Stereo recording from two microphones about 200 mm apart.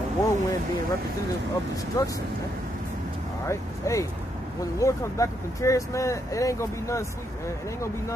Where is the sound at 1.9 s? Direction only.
15° left (ahead or behind).